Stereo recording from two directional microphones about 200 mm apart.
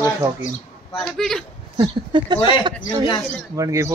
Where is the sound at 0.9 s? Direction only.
Centre (ahead or behind).